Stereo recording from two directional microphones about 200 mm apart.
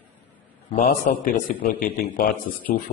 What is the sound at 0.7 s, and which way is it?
A man's voice, 40° left (ahead or behind).